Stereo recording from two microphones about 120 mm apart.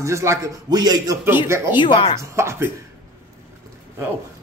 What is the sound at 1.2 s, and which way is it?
Speech, 20° right (ahead or behind).